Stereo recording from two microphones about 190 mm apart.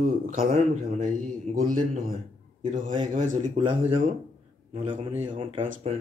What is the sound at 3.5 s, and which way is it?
Speech, 30° right (ahead or behind).